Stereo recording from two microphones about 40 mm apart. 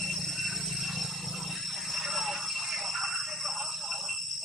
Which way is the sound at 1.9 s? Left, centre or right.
Centre.